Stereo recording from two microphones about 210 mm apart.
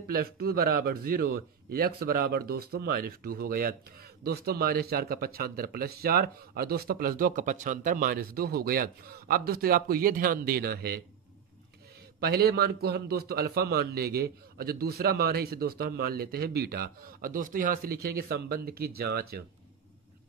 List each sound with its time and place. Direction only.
0.1 s a man's voice: 45° right (ahead or behind)
12.2 s a man's voice: 50° right (ahead or behind)